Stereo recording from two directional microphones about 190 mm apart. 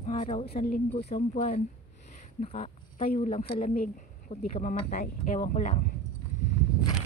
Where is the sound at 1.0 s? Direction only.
35° left (ahead or behind).